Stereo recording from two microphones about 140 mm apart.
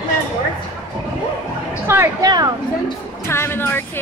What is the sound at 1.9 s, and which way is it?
Speech, 15° right (ahead or behind).